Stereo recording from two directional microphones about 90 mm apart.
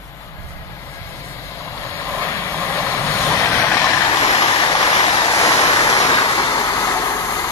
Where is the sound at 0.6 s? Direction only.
35° left (ahead or behind).